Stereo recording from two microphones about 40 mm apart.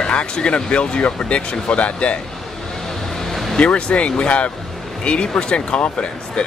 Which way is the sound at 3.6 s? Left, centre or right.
Left.